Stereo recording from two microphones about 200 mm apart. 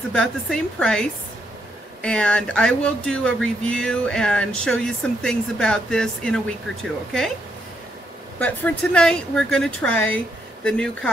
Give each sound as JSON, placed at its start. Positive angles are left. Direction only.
{"t": 0.1, "sound": "speech", "side_deg": 5}
{"t": 8.4, "sound": "speech", "side_deg": 5}